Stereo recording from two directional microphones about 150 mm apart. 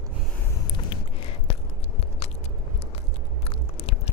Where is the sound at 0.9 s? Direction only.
35° left (ahead or behind).